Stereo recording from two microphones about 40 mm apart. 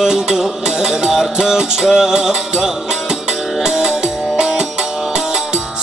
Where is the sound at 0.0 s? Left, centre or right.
Centre.